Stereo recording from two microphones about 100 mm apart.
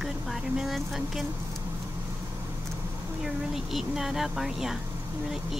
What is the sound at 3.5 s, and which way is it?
Speech, 5° right (ahead or behind).